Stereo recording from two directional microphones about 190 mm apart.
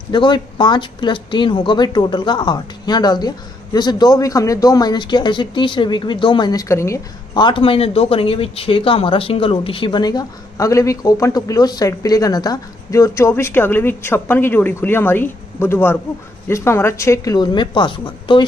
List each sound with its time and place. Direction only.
0.1 s speech: 25° left (ahead or behind)